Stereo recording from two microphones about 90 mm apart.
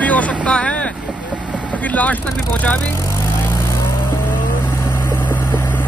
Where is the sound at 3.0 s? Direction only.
35° left (ahead or behind).